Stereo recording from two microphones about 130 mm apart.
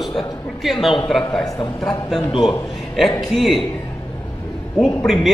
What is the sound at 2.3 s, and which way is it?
Speech, 40° left (ahead or behind).